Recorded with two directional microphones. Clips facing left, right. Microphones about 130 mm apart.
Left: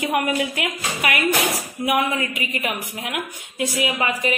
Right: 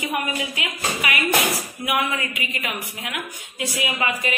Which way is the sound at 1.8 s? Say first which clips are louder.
Left 4 dB; 35° left (ahead or behind).